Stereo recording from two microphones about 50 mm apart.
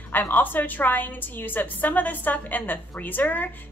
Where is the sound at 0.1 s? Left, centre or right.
Left.